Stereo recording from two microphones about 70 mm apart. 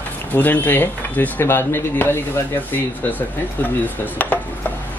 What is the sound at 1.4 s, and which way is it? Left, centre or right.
Speech, left.